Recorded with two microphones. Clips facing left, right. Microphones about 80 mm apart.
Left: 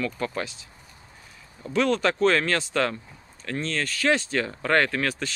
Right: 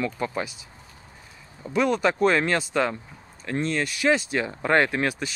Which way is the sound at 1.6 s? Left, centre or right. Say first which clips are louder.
Right 1 dB; centre.